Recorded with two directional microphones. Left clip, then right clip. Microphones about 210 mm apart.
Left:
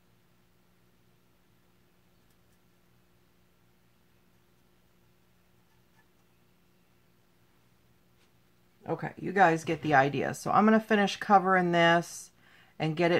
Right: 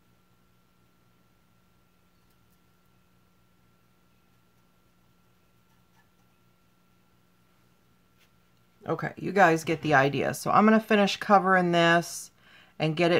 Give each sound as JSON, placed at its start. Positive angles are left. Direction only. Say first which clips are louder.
{"t": 8.8, "sound": "speech", "louder": "right 3 dB", "side_deg": -30}